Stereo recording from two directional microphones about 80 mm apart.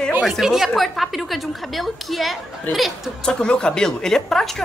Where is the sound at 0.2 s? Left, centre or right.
Centre.